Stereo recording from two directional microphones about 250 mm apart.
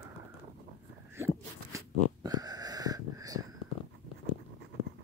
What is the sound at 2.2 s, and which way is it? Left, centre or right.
Wheeze, centre.